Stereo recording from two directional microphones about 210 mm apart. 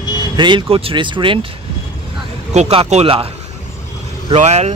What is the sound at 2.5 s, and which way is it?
Speech, 30° right (ahead or behind).